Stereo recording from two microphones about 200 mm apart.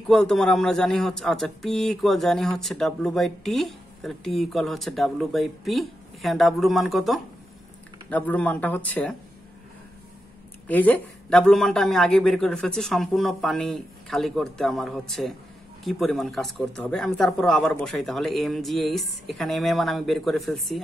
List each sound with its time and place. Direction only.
0.1 s a man's voice: 5° left (ahead or behind)
10.7 s a man's voice: 10° left (ahead or behind)